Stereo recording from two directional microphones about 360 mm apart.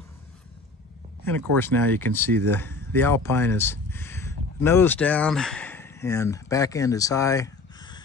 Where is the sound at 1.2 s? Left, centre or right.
Centre.